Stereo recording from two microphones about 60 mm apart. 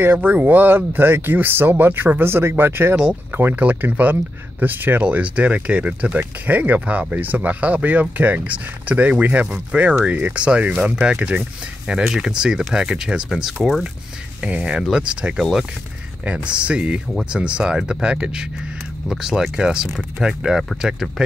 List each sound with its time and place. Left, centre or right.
0.0 s speech: right
3.5 s speech: right
5.0 s speech: right
12.0 s speech: centre
14.4 s speech: centre
16.4 s speech: centre